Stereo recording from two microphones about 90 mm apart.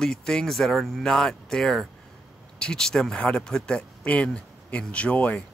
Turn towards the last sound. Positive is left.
turn(degrees=15)  # may be behind; listen again after turning